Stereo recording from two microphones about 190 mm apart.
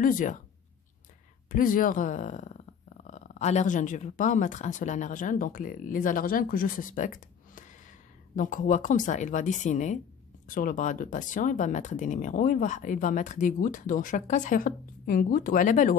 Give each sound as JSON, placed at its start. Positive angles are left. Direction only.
{"t": 0.0, "sound": "speech", "side_deg": 45}
{"t": 1.5, "sound": "a woman's voice", "side_deg": 45}